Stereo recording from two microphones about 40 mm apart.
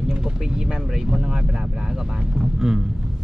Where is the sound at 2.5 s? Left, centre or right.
Centre.